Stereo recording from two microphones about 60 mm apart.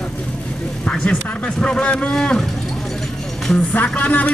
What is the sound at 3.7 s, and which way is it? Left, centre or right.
Speech, left.